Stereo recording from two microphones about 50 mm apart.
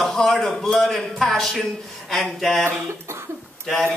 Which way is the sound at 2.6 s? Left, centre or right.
Right.